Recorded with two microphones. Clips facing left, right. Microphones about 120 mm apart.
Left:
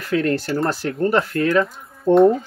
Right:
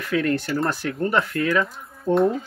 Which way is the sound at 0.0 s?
35° left (ahead or behind).